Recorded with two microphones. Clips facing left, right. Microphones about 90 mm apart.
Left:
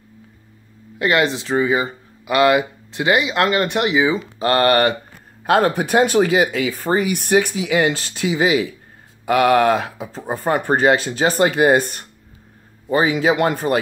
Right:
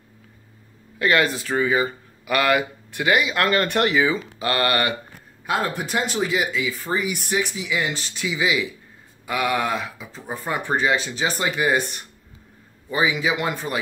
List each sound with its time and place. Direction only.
0.9 s speech: 25° left (ahead or behind)
4.4 s speech: 35° left (ahead or behind)
5.5 s speech: 70° left (ahead or behind)
8.1 s speech: 45° left (ahead or behind)
9.2 s speech: 60° left (ahead or behind)